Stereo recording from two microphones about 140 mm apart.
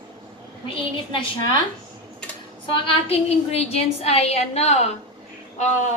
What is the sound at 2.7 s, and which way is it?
A woman's voice, 45° left (ahead or behind).